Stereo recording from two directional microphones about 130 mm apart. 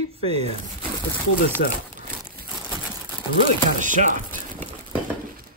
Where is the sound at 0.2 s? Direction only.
50° right (ahead or behind).